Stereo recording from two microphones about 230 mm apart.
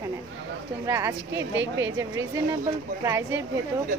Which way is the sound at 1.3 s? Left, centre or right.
Right.